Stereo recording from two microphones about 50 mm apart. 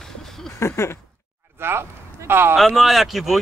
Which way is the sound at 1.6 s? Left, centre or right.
Right.